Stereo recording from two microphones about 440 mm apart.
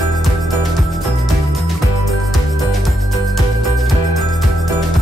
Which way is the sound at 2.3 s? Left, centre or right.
Centre.